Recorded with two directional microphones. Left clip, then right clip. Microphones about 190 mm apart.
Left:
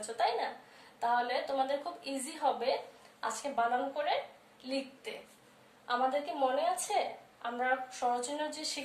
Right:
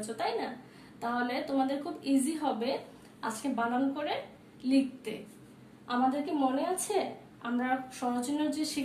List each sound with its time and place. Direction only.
0.0 s a woman's voice: 10° right (ahead or behind)